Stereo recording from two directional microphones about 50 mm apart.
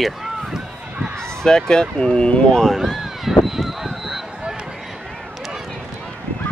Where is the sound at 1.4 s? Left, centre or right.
Centre.